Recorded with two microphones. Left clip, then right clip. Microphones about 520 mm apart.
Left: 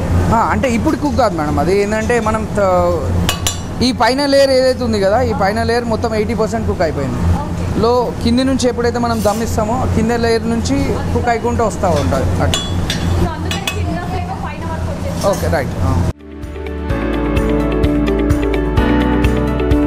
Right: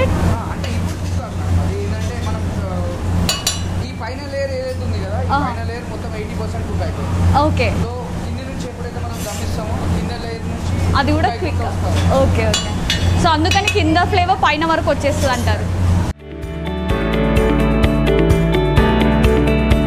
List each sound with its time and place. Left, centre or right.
3.8 s a man's voice: left